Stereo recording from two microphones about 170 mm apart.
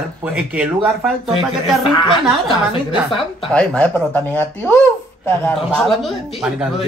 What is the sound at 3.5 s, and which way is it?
A man's voice, 5° left (ahead or behind).